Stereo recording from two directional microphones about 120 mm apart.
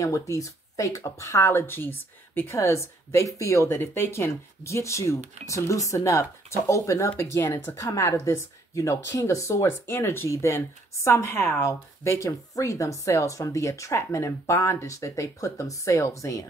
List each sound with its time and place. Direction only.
0.0 s speech: 25° left (ahead or behind)